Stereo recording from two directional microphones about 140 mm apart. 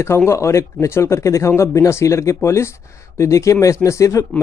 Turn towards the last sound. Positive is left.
turn(degrees=20)  # may be behind; listen again after turning